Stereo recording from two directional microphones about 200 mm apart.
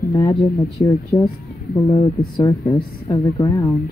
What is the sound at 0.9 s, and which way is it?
Speech, centre (ahead or behind).